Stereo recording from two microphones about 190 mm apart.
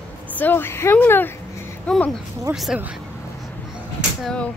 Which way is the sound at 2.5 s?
5° right (ahead or behind).